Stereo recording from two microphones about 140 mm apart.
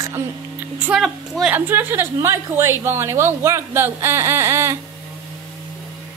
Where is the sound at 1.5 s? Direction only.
15° right (ahead or behind).